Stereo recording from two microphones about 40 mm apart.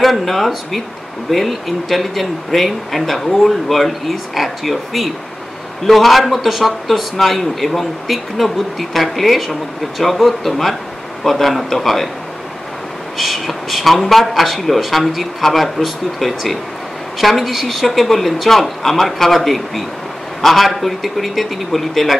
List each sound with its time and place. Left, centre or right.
0.0 s a man's voice: centre
13.2 s a man's voice: centre